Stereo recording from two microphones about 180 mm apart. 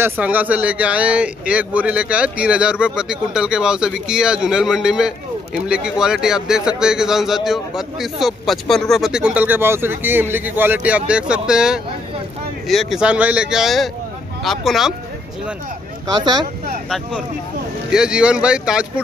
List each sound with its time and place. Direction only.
0.0 s speech: 10° right (ahead or behind)
16.1 s speech: 20° right (ahead or behind)
17.8 s speech: 5° right (ahead or behind)